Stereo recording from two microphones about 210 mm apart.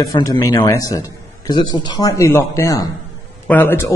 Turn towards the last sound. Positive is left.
turn(degrees=10)  # may be behind; listen again after turning